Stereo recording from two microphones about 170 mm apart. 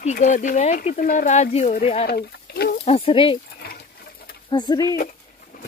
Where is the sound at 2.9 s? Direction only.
35° left (ahead or behind).